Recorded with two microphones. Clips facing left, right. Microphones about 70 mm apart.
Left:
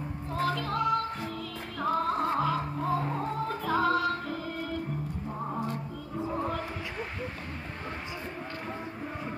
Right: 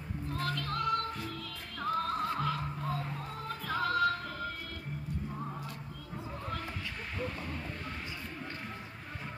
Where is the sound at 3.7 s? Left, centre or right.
Centre.